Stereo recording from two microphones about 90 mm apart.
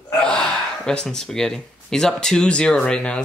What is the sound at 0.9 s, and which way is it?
Speech, 5° left (ahead or behind).